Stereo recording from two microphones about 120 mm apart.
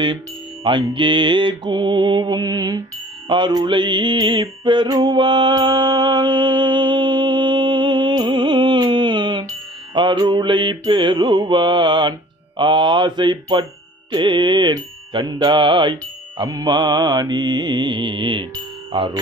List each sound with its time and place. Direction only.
0.7 s mantra: 40° right (ahead or behind)